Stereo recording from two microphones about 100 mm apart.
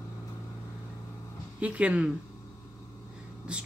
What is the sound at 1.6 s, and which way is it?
Speech, 15° right (ahead or behind).